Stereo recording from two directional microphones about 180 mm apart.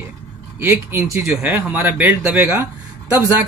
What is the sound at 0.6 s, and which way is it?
Speech, 15° right (ahead or behind).